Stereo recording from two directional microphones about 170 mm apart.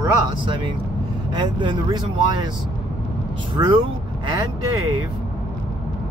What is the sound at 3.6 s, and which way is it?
Speech, 30° right (ahead or behind).